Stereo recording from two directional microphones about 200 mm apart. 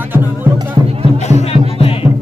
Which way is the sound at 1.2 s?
35° left (ahead or behind).